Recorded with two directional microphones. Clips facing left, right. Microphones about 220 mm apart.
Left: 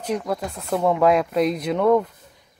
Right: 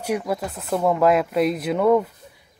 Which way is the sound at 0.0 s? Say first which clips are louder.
Right 1 dB; 10° right (ahead or behind).